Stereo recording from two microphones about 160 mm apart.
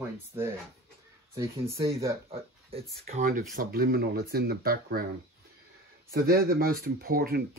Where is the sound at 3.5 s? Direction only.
70° right (ahead or behind).